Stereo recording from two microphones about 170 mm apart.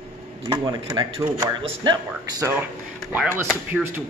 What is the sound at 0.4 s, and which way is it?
Speech, 25° right (ahead or behind).